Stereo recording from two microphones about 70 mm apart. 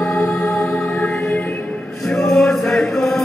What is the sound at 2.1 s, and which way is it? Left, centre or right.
Music, centre.